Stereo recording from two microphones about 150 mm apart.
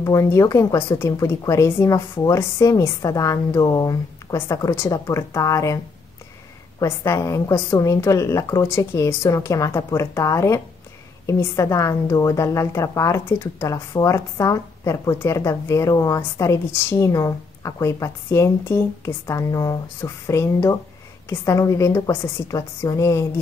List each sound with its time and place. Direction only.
0.0 s a woman's voice: 20° left (ahead or behind)
6.8 s a woman's voice: 20° left (ahead or behind)